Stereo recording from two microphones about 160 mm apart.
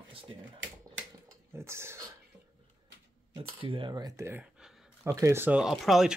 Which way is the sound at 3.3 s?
35° right (ahead or behind).